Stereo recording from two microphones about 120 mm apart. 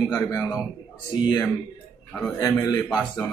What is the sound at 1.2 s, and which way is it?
A man's voice, 40° left (ahead or behind).